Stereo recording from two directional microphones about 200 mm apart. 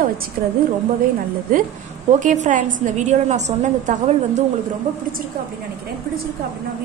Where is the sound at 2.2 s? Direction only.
40° right (ahead or behind).